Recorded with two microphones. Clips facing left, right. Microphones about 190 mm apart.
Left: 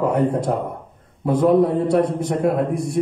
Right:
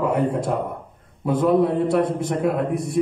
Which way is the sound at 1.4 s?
25° left (ahead or behind).